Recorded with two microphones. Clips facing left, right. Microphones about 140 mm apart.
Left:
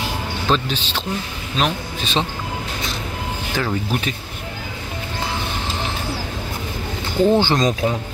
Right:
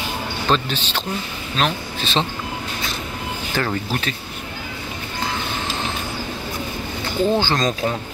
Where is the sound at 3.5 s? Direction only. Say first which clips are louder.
Left 1 dB; 5° left (ahead or behind).